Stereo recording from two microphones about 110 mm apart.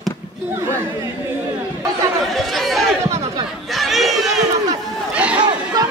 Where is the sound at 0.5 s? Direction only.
25° right (ahead or behind).